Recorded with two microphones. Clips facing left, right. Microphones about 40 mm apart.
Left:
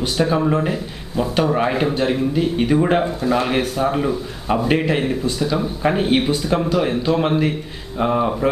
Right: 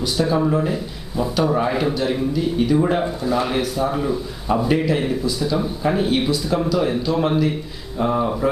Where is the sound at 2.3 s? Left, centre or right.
Left.